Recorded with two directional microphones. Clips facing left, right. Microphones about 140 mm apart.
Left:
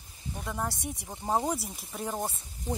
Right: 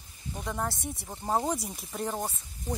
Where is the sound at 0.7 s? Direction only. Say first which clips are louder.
Right 1 dB; 15° left (ahead or behind).